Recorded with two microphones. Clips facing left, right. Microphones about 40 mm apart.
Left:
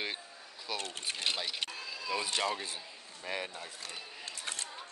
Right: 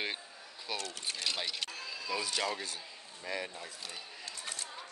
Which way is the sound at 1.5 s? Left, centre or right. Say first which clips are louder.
Left 1 dB; centre.